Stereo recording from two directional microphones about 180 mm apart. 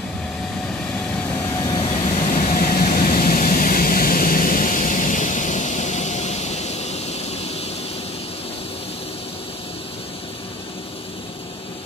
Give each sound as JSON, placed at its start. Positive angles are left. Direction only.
{"t": 1.6, "sound": "vehicle", "side_deg": 25}
{"t": 2.3, "sound": "vehicle", "side_deg": 50}